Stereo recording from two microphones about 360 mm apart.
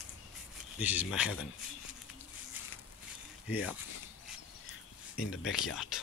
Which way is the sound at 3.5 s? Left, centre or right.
Centre.